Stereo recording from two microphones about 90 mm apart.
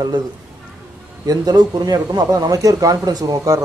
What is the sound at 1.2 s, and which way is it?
Speech, 45° right (ahead or behind).